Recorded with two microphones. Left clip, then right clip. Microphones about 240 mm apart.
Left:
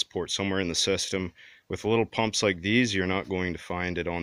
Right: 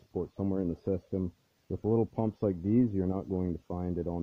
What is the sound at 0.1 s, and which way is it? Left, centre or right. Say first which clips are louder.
Speech: left 6 dB; left.